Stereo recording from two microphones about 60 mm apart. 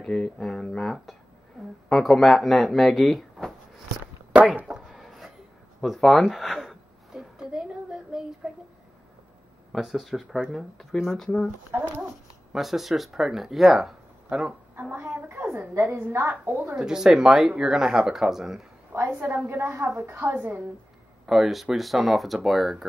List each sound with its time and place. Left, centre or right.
0.0 s speech: centre
4.4 s speech: right
4.8 s a sound: centre
8.4 s speech: centre
9.7 s speech: centre
12.5 s speech: centre
14.8 s a sound: right
15.3 s a sound: right
15.7 s a woman's voice: right
16.4 s speech: right
16.7 s speech: centre
18.9 s a sound: right
19.4 s a woman's voice: right
21.3 s speech: centre